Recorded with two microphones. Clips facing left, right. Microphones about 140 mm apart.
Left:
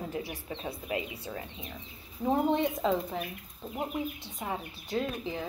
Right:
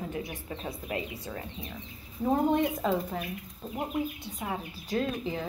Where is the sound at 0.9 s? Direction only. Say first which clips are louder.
Left 1 dB; 25° left (ahead or behind).